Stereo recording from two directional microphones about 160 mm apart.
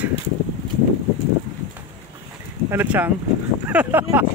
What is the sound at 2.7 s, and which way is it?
Speech, 10° right (ahead or behind).